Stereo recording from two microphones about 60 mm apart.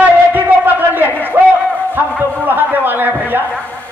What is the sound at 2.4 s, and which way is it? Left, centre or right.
A man's voice, right.